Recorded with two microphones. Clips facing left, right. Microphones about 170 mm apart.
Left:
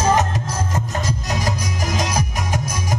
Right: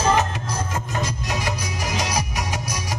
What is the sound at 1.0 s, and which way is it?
Music, 45° left (ahead or behind).